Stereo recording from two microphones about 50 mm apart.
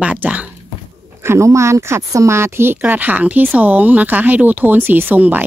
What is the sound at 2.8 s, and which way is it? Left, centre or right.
A woman's voice, right.